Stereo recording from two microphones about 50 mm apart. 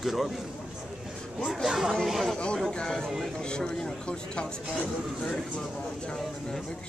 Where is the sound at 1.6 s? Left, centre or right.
Centre.